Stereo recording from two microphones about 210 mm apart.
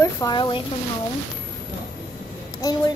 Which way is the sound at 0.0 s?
20° left (ahead or behind).